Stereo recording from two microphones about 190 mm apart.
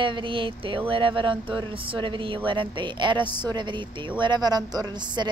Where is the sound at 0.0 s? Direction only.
25° right (ahead or behind).